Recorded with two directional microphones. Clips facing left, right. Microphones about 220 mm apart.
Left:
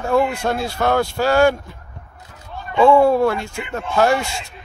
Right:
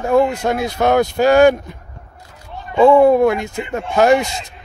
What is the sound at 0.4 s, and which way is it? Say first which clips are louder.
Speech: right 3 dB; 20° right (ahead or behind).